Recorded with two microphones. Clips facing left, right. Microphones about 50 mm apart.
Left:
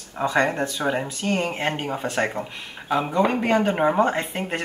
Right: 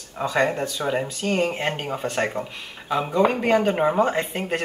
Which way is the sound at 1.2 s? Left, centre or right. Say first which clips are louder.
Right 1 dB; centre.